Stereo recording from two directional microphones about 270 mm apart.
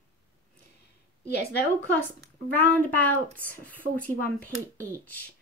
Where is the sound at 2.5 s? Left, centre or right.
Centre.